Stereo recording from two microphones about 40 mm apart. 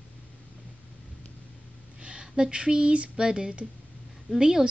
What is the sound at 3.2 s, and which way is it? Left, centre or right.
A woman's voice, centre.